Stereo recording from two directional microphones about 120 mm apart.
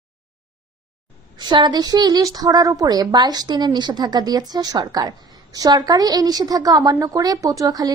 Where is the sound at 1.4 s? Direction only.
40° right (ahead or behind).